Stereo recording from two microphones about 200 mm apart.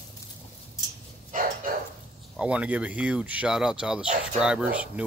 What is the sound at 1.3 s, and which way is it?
Dog, 45° right (ahead or behind).